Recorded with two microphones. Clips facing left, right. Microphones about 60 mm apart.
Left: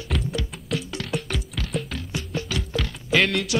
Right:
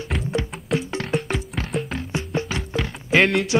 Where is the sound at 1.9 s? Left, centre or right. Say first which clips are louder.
Right 4 dB; right.